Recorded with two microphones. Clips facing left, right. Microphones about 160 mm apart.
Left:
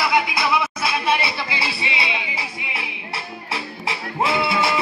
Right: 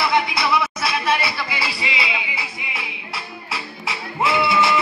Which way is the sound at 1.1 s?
20° left (ahead or behind).